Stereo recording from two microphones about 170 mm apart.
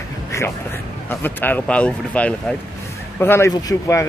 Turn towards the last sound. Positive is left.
turn(degrees=15)  # may be behind; listen again after turning